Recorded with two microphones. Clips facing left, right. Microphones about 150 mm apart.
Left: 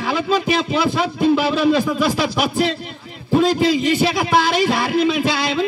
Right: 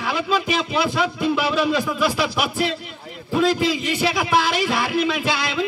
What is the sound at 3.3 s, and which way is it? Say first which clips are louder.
Speech: left 4 dB; 35° left (ahead or behind).